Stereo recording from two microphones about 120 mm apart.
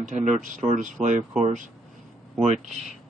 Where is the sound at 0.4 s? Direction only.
80° right.